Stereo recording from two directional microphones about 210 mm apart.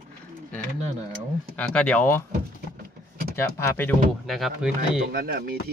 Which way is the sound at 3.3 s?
10° left (ahead or behind).